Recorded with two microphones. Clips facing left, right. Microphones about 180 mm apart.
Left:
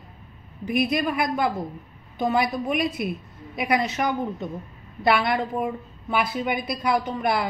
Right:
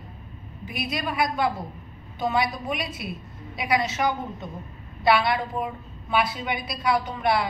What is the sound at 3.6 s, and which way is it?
Speech, 45° left (ahead or behind).